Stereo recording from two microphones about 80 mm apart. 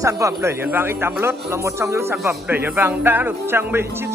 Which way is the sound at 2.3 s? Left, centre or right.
Right.